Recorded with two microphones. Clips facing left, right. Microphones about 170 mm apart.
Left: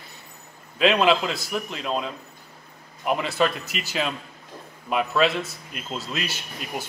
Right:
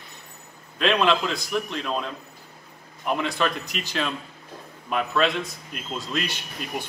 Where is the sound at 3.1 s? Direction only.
5° left (ahead or behind).